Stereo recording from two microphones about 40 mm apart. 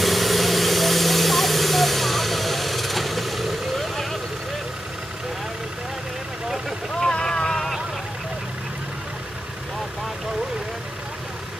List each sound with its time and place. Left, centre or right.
0.0 s vehicle: centre
7.0 s vehicle: centre